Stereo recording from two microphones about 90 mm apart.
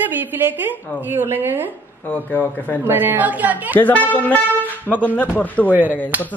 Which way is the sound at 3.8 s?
20° left (ahead or behind).